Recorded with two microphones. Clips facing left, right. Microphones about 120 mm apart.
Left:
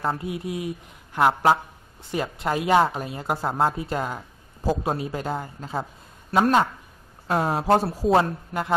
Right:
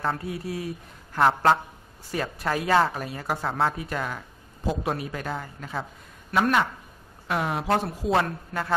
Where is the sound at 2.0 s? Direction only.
20° left (ahead or behind).